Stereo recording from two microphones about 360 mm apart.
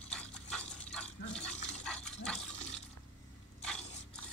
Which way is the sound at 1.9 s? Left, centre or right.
Centre.